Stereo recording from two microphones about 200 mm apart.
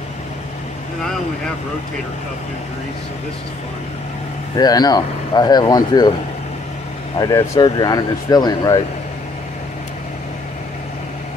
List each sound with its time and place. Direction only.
4.6 s speech: 20° left (ahead or behind)
7.2 s speech: 15° left (ahead or behind)